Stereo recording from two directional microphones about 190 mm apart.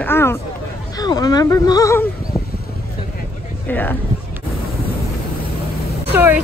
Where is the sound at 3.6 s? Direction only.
10° left (ahead or behind).